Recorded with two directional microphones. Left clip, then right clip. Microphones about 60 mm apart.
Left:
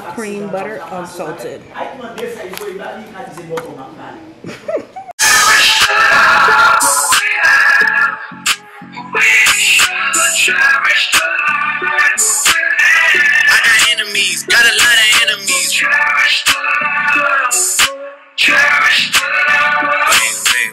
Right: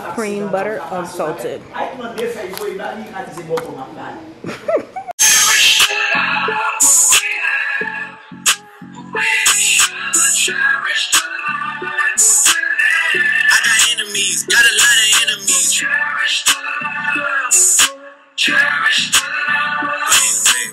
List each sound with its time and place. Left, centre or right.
0.1 s a woman's voice: right
4.7 s a sound: right
5.2 s music: centre
9.1 s music: centre
18.4 s music: left